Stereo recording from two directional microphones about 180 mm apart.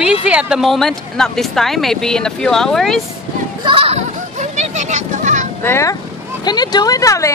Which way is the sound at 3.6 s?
30° right (ahead or behind).